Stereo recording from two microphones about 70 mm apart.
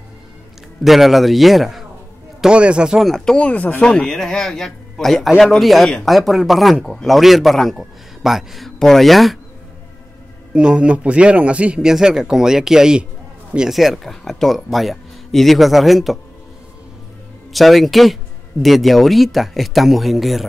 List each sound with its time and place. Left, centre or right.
0.8 s speech: centre
2.4 s speech: centre
3.0 s speech: centre
3.3 s speech: centre
3.8 s a man's voice: centre
10.5 s speech: centre
17.5 s speech: centre